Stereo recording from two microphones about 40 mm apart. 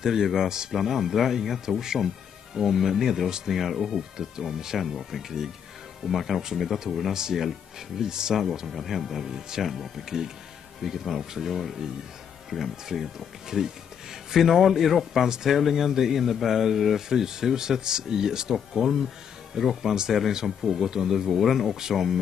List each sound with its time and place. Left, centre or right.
0.0 s speech: centre
0.5 s speech: centre
0.7 s speech: centre
1.8 s speech: centre
7.2 s speech: centre
8.6 s speech: centre
18.5 s speech: centre